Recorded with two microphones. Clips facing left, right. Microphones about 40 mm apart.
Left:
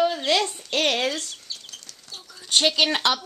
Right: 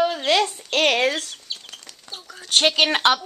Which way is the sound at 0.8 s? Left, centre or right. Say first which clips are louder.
Right 5 dB; right.